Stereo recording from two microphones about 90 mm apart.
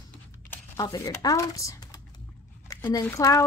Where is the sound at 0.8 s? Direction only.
40° left (ahead or behind).